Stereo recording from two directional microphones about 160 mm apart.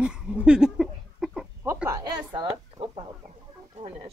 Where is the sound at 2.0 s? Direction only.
30° right (ahead or behind).